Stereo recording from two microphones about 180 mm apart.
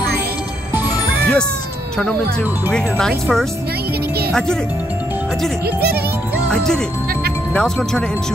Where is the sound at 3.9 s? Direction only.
60° right (ahead or behind).